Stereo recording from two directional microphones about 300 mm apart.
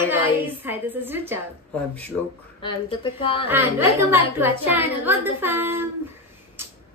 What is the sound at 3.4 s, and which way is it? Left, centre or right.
A woman's voice, centre.